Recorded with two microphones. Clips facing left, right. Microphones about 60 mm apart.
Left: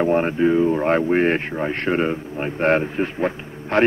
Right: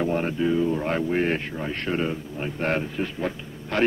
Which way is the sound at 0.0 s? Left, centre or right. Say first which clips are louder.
Left 6 dB; left.